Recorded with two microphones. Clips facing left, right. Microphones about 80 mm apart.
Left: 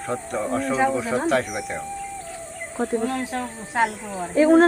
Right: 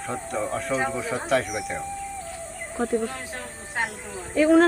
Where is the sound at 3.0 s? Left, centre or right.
Left.